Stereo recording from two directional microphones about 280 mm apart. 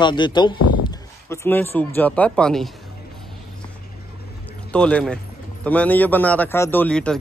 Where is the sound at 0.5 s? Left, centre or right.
Left.